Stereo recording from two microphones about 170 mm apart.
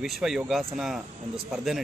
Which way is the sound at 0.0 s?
Centre (ahead or behind).